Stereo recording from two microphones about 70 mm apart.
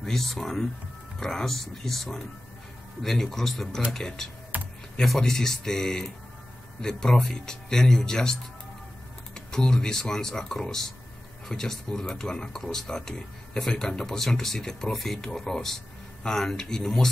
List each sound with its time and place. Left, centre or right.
0.0 s speech: centre